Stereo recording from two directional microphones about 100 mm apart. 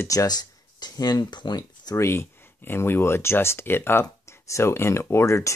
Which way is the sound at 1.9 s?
25° left (ahead or behind).